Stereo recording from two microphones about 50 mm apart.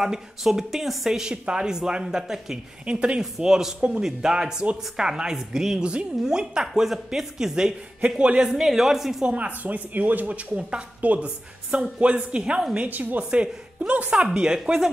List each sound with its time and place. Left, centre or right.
0.0 s a woman's voice: centre
2.9 s a woman's voice: right
3.2 s a woman's voice: centre
8.5 s speech: centre
9.2 s a woman's voice: right
12.7 s speech: right
13.3 s a woman's voice: right